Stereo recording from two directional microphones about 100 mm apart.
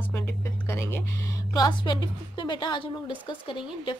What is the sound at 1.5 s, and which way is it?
A woman's voice, 50° left (ahead or behind).